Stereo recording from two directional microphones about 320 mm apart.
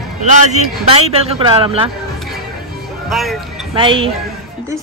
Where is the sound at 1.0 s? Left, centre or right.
Centre.